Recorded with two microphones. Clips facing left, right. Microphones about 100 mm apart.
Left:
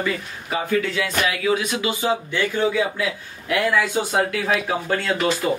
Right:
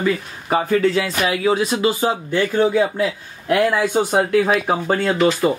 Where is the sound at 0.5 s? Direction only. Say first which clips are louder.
Right 6 dB; 40° right (ahead or behind).